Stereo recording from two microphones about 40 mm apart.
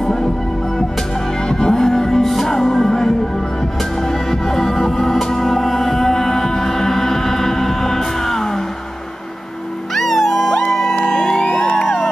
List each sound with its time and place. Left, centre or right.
0.0 s music: centre
1.5 s music: centre
4.3 s music: centre
9.9 s music: centre
11.4 s music: left
11.8 s music: centre